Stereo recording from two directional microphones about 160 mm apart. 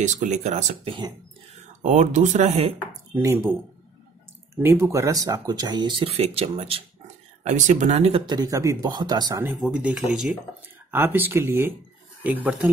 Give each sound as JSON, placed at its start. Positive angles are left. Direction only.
{"t": 0.0, "sound": "speech", "side_deg": -50}
{"t": 0.8, "sound": "speech", "side_deg": -30}
{"t": 1.8, "sound": "speech", "side_deg": -45}
{"t": 3.2, "sound": "speech", "side_deg": -15}
{"t": 4.6, "sound": "speech", "side_deg": -15}
{"t": 7.4, "sound": "speech", "side_deg": -50}
{"t": 8.3, "sound": "speech", "side_deg": -25}
{"t": 9.6, "sound": "speech", "side_deg": -5}
{"t": 10.9, "sound": "speech", "side_deg": -15}